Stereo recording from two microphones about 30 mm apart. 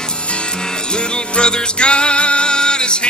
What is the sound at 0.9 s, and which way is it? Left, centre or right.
Music, left.